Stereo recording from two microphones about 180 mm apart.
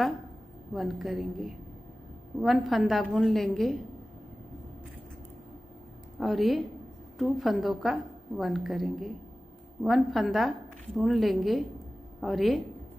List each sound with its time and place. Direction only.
0.7 s a woman's voice: centre (ahead or behind)
6.1 s a woman's voice: centre (ahead or behind)